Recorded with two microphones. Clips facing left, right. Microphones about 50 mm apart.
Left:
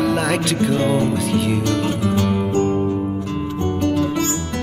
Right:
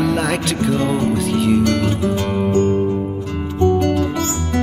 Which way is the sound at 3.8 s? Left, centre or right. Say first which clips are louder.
Right 1 dB; right.